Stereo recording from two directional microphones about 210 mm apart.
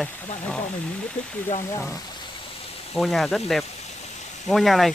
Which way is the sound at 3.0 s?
Centre (ahead or behind).